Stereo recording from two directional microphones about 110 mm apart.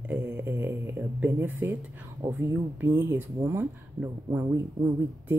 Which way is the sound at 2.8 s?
20° right (ahead or behind).